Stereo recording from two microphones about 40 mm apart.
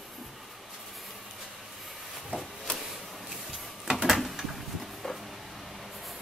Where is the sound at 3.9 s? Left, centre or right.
Centre.